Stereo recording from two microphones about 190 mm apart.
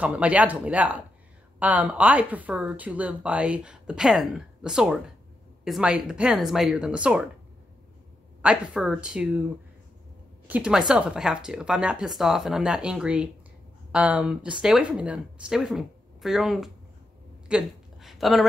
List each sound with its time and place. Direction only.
0.0 s speech: 5° right (ahead or behind)
8.4 s speech: 5° right (ahead or behind)
10.4 s speech: 5° right (ahead or behind)
17.5 s a sound: 5° right (ahead or behind)